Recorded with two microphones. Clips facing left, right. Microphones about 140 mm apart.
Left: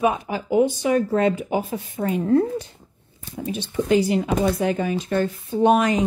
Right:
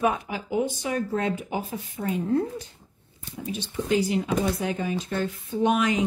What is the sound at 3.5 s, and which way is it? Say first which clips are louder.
Speech: left 5 dB; 60° left (ahead or behind).